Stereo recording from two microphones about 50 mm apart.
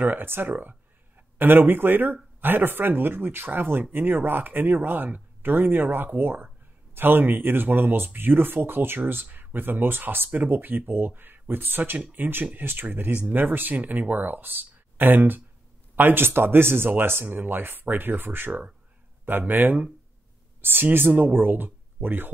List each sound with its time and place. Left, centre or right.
0.0 s speech: right